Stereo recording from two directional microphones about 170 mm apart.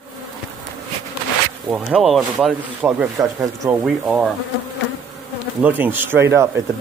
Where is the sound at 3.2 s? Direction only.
20° right (ahead or behind).